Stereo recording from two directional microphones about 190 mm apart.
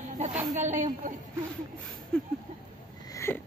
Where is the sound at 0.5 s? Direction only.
40° right (ahead or behind).